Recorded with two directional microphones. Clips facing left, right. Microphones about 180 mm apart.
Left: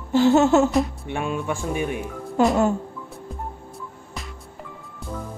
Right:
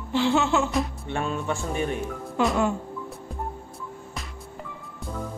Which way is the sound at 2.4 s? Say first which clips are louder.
Left 5 dB; 45° left (ahead or behind).